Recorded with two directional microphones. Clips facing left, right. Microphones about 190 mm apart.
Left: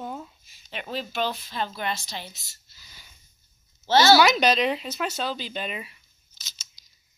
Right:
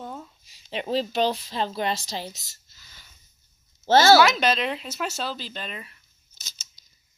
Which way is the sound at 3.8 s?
45° right (ahead or behind).